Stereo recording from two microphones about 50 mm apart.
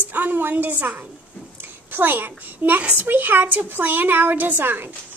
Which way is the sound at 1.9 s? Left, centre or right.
Right.